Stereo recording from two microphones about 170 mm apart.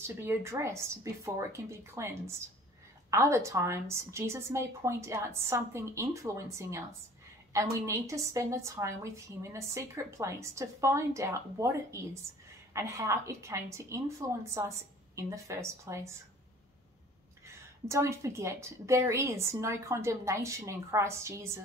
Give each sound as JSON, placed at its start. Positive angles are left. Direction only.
{"t": 0.0, "sound": "a woman's voice", "side_deg": -15}
{"t": 17.8, "sound": "a woman's voice", "side_deg": -15}